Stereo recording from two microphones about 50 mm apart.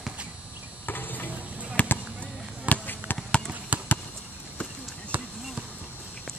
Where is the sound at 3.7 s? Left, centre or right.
Right.